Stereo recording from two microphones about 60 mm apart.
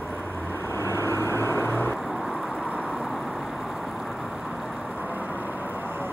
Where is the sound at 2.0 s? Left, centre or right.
Right.